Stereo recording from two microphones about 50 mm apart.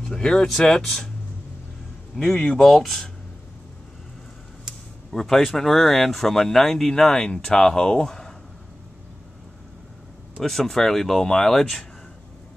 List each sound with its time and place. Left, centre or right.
0.0 s speech: centre
2.1 s speech: centre
2.6 s speech: centre
5.1 s speech: centre
10.4 s speech: centre